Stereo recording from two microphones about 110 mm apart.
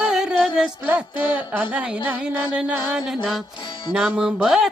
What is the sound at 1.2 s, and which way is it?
Music, 15° right (ahead or behind).